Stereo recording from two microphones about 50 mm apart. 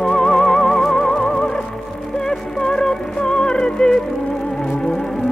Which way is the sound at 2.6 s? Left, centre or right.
Centre.